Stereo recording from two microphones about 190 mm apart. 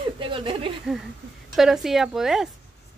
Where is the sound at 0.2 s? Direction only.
25° right (ahead or behind).